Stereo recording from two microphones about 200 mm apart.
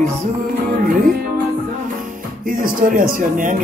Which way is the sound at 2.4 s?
45° right (ahead or behind).